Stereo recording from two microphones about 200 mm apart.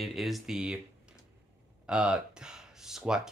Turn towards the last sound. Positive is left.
turn(degrees=-5)  # may be behind; listen again after turning